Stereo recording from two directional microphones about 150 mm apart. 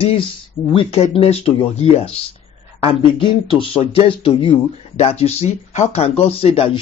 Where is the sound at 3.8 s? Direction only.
40° left (ahead or behind).